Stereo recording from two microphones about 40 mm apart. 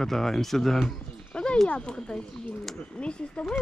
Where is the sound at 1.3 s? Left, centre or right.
Left.